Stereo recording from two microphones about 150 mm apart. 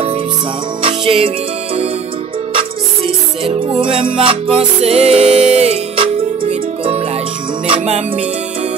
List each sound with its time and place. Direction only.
0.8 s music: 40° right (ahead or behind)
2.5 s music: 40° right (ahead or behind)